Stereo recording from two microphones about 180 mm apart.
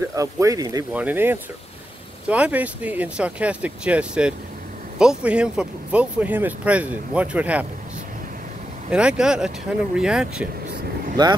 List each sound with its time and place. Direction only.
0.1 s speech: 20° right (ahead or behind)
8.9 s speech: 5° right (ahead or behind)
11.2 s speech: 25° right (ahead or behind)